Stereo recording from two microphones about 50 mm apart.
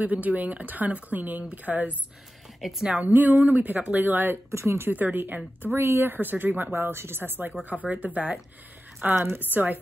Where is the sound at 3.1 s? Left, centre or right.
Right.